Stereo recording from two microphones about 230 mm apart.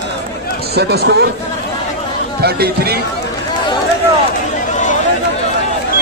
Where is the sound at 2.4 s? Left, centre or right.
Right.